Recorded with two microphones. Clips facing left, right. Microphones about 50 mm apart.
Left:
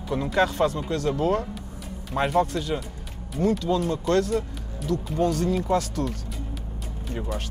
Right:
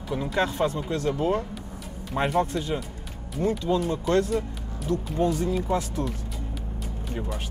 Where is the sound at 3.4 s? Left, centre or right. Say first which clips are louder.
Left 1 dB; right.